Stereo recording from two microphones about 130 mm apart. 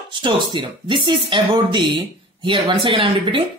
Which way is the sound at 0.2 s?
40° right (ahead or behind).